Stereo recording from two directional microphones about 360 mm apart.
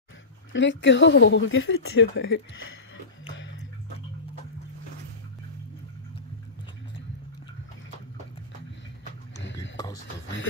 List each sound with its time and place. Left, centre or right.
0.5 s speech: left